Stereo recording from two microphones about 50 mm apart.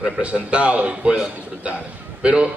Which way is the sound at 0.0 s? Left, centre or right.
Right.